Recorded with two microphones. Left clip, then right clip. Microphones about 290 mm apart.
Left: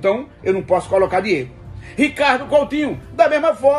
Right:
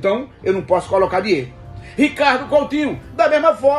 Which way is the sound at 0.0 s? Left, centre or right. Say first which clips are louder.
Even; centre.